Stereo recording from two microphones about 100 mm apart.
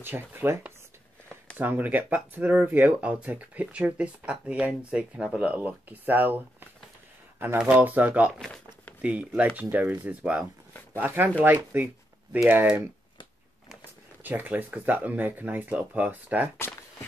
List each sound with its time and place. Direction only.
0.0 s speech: 20° right (ahead or behind)
7.5 s speech: 10° right (ahead or behind)
10.7 s a sound: 20° left (ahead or behind)
11.0 s speech: 15° right (ahead or behind)
14.2 s speech: 20° right (ahead or behind)